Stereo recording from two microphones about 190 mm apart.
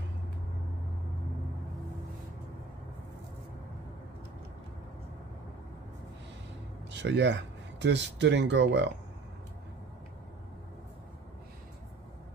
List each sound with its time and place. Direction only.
6.9 s speech: 70° right (ahead or behind)